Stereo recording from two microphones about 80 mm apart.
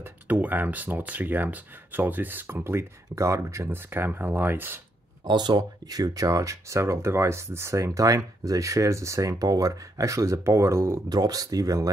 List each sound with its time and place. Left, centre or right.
0.0 s speech: right
5.2 s speech: right
11.1 s speech: right